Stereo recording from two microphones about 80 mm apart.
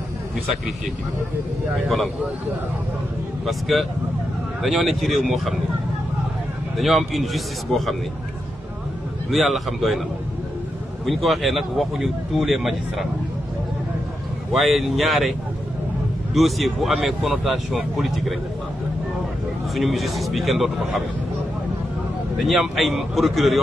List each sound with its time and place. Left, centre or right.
3.4 s speech: centre
6.8 s speech: centre
9.3 s speech: centre
11.1 s speech: centre
14.5 s speech: centre
16.3 s speech: centre
19.7 s speech: centre
22.4 s speech: centre